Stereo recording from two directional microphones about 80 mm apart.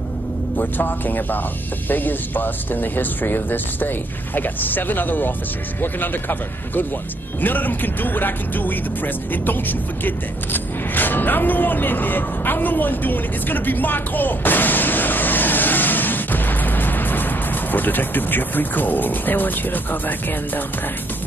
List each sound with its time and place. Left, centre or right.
0.6 s speech: left